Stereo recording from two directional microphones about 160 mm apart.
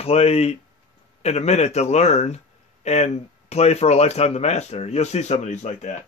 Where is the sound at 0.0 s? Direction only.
40° left (ahead or behind).